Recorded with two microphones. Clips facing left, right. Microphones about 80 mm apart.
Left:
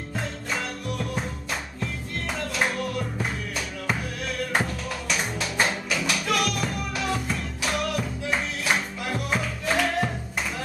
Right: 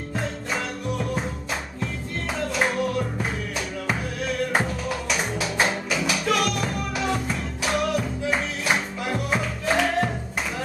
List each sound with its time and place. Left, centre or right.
0.1 s music: centre
2.3 s music: centre